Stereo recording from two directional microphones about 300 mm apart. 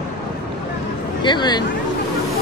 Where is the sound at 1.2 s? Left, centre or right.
Centre.